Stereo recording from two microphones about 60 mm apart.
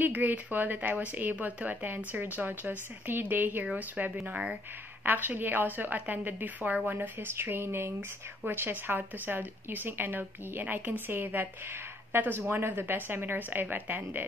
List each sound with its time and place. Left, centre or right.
0.0 s speech: right
4.3 s speech: centre
5.0 s a woman's voice: right